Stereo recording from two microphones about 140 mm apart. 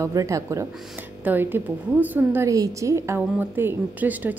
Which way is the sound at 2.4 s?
25° right (ahead or behind).